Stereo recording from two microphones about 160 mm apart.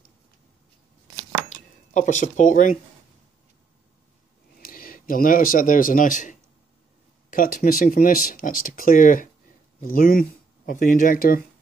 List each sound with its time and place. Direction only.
2.0 s speech: 50° left (ahead or behind)
4.6 s speech: 65° left (ahead or behind)